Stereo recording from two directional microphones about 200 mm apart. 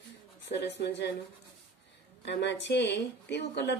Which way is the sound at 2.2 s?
60° left (ahead or behind).